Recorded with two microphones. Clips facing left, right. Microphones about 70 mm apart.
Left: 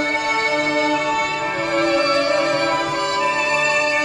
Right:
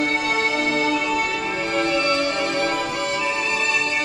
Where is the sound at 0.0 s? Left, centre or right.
Left.